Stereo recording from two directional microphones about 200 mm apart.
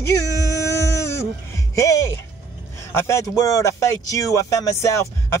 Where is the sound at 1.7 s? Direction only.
15° left (ahead or behind).